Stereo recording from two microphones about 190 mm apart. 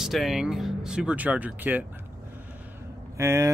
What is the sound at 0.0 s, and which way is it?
Speech, centre (ahead or behind).